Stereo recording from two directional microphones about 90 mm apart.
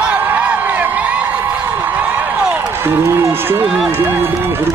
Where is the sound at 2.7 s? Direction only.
25° right (ahead or behind).